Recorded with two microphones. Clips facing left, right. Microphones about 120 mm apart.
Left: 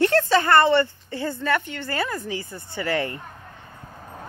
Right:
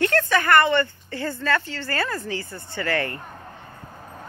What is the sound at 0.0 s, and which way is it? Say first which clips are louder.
A woman's voice: left 2 dB; 25° left (ahead or behind).